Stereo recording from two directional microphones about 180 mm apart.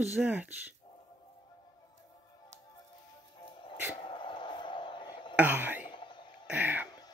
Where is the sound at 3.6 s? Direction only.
30° left (ahead or behind).